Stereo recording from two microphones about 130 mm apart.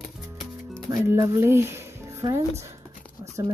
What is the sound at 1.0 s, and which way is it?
Speech, 20° right (ahead or behind).